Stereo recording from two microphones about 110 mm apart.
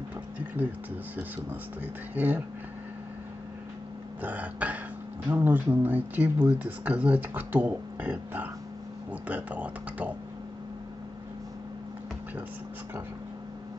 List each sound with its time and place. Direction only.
2.1 s speech: 15° right (ahead or behind)
4.2 s speech: 15° right (ahead or behind)